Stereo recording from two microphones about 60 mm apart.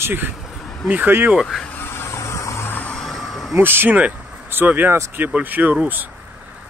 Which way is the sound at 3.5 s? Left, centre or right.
Right.